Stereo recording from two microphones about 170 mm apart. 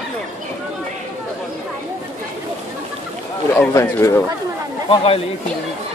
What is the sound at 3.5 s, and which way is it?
Speech, 15° left (ahead or behind).